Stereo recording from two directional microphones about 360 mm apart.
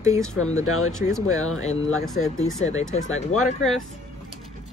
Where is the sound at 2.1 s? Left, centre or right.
Centre.